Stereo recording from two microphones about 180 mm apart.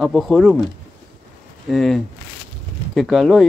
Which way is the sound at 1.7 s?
Centre (ahead or behind).